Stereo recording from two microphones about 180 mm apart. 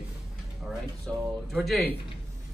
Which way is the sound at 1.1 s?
5° left (ahead or behind).